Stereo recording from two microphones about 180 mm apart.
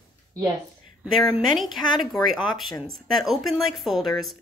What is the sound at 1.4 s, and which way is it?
Speech, centre (ahead or behind).